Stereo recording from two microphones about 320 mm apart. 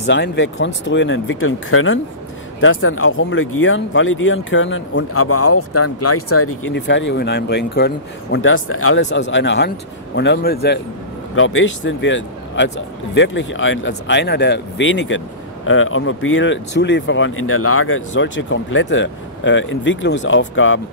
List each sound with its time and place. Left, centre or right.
0.0 s speech: left